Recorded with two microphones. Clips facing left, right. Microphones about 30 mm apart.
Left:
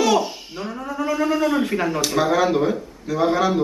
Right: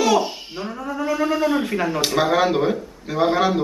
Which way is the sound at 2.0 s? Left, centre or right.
Centre.